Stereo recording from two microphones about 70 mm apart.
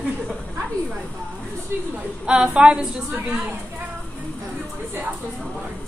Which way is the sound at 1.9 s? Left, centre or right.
Centre.